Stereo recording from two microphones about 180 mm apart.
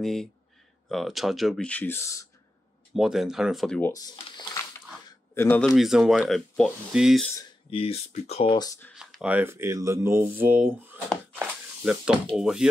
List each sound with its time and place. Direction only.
0.0 s speech: centre (ahead or behind)
2.9 s speech: centre (ahead or behind)
3.9 s a sound: 20° left (ahead or behind)
5.3 s a man's voice: 10° left (ahead or behind)
5.7 s speech: centre (ahead or behind)
7.7 s speech: 35° left (ahead or behind)
8.9 s speech: 5° right (ahead or behind)
11.3 s a sound: 5° right (ahead or behind)
12.4 s speech: 5° right (ahead or behind)